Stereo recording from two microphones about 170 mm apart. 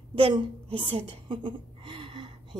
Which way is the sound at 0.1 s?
35° right (ahead or behind).